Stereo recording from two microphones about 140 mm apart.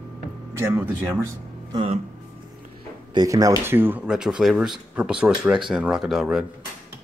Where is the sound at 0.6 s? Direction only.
20° right (ahead or behind).